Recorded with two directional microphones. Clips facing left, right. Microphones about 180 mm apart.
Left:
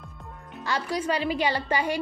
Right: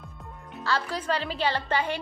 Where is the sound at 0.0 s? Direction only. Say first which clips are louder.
Even; centre (ahead or behind).